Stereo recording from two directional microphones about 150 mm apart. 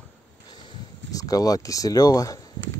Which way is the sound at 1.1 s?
25° left (ahead or behind).